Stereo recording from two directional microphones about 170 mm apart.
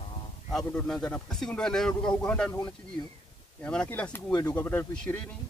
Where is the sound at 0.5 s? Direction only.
5° left (ahead or behind).